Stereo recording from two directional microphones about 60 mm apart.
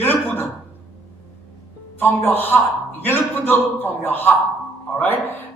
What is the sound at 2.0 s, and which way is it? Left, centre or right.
A man's voice, left.